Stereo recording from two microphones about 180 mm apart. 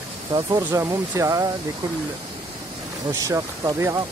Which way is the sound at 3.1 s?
20° right (ahead or behind).